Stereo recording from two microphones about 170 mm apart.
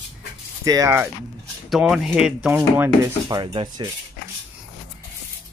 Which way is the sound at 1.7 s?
Centre (ahead or behind).